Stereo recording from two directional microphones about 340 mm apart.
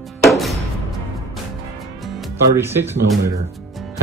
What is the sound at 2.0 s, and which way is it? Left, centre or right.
Speech, centre.